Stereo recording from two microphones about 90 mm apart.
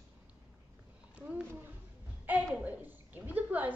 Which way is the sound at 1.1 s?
20° right (ahead or behind).